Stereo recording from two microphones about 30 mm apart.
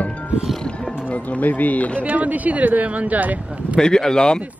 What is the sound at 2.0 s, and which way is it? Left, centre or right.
Speech, right.